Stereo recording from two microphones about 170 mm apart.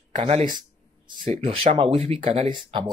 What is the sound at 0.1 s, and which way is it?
Speech, 35° right (ahead or behind).